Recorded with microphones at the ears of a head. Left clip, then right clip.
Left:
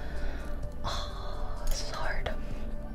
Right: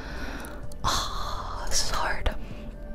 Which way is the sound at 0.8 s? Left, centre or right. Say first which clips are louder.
Right 10 dB; right.